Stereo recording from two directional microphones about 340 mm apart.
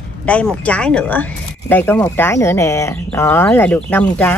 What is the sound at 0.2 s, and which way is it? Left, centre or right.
Speech, centre.